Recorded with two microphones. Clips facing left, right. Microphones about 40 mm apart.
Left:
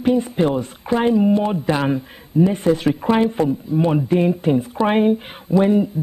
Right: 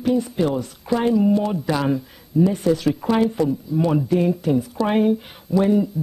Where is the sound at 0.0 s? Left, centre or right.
Left.